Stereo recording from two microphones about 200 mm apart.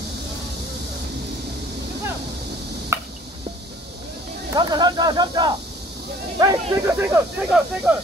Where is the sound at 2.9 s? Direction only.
10° right (ahead or behind).